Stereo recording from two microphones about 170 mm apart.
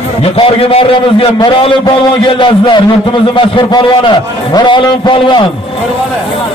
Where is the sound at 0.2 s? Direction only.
35° left (ahead or behind).